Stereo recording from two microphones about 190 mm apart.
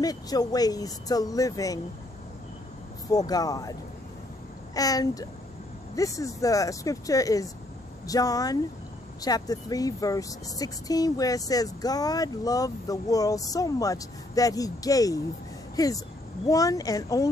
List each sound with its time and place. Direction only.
0.0 s speech: 20° left (ahead or behind)
3.1 s speech: 20° left (ahead or behind)
4.7 s speech: 20° left (ahead or behind)